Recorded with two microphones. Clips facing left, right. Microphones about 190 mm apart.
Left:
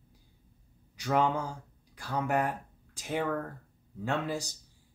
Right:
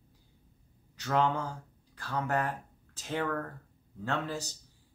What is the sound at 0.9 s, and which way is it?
Speech, 10° left (ahead or behind).